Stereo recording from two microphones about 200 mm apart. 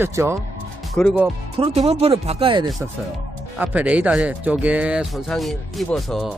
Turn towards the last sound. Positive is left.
turn(degrees=0)  # may be behind; listen again after turning